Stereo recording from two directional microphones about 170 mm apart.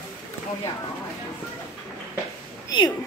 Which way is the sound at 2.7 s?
25° left (ahead or behind).